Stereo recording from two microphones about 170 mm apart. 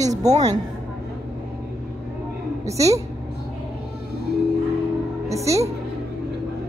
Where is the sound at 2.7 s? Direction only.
20° right (ahead or behind).